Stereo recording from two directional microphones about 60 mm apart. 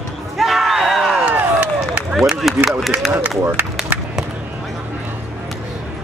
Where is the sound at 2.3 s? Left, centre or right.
Centre.